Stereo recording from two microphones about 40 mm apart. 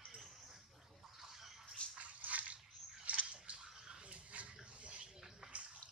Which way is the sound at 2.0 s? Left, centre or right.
Right.